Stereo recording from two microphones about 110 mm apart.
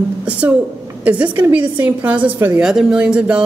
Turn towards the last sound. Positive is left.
turn(degrees=-10)  # may be behind; listen again after turning